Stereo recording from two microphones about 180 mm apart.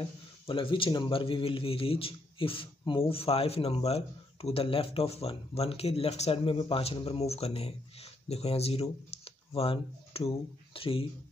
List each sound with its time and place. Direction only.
0.5 s a man's voice: 30° left (ahead or behind)